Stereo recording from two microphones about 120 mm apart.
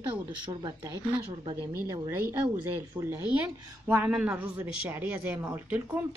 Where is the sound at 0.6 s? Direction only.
30° right (ahead or behind).